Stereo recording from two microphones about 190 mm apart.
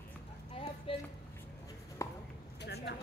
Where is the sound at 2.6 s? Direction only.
60° left (ahead or behind).